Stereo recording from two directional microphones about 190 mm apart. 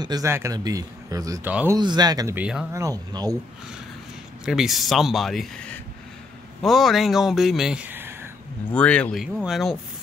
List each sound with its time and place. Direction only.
0.0 s speech: 20° right (ahead or behind)
1.8 s speech: 20° right (ahead or behind)
4.5 s speech: centre (ahead or behind)
8.7 s speech: 5° left (ahead or behind)